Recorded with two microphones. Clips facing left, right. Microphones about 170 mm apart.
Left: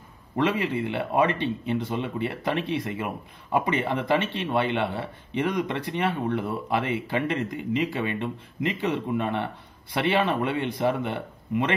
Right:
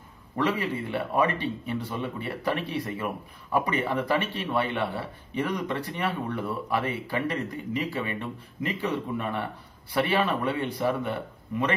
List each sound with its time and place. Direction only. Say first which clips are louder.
0.9 s speech: left 1 dB; 20° left (ahead or behind)